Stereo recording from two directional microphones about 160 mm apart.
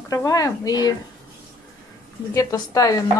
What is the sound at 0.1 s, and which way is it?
Speech, 20° left (ahead or behind).